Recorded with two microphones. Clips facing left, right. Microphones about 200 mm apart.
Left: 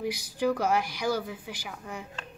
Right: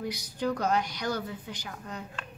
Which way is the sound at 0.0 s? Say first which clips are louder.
Left 3 dB; 10° left (ahead or behind).